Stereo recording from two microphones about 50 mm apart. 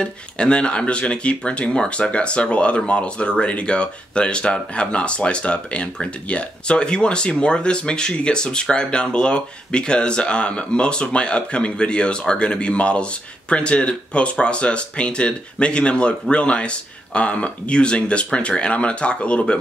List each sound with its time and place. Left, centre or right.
0.0 s speech: centre